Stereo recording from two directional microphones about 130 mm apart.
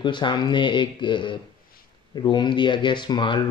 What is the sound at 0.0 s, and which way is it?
Speech, 35° left (ahead or behind).